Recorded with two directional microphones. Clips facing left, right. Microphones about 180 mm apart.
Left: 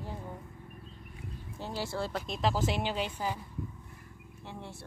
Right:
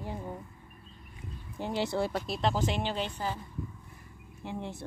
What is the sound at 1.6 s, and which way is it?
Speech, 20° right (ahead or behind).